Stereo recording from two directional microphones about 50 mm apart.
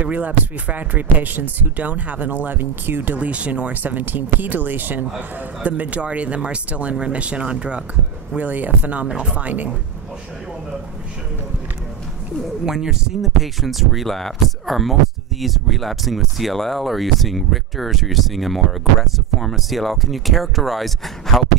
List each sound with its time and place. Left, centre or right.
0.0 s speech: right
8.4 s speech: right
9.0 s speech: centre
12.6 s speech: centre
13.2 s speech: centre